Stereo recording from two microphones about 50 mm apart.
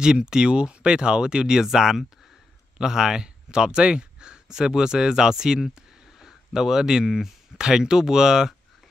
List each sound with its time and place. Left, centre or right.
0.0 s speech: centre